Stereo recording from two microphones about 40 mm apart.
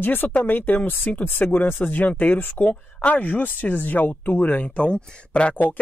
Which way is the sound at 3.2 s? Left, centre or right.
Left.